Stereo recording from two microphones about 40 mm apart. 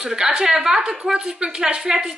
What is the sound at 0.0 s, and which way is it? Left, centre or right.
A woman's voice, centre.